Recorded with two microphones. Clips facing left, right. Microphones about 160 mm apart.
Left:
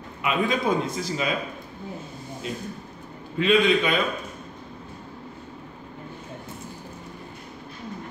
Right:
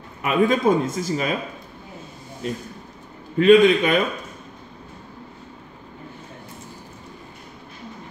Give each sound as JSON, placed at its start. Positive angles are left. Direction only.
{"t": 0.2, "sound": "a man's voice", "side_deg": -45}
{"t": 3.3, "sound": "a man's voice", "side_deg": -45}